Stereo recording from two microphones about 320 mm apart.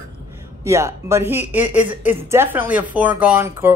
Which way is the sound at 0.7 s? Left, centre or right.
Centre.